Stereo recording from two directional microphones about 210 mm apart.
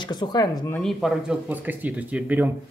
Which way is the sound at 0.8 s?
Centre (ahead or behind).